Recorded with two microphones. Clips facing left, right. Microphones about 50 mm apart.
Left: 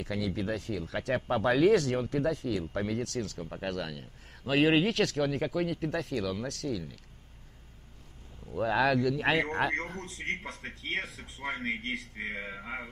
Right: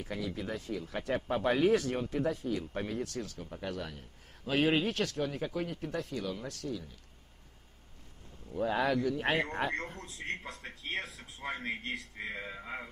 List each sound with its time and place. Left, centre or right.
0.0 s a man's voice: left
8.5 s speech: left
9.7 s speech: left
11.8 s a man's voice: left
12.3 s speech: left